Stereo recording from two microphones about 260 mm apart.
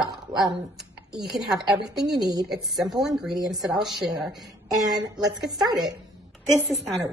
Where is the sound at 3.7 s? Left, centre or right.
Centre.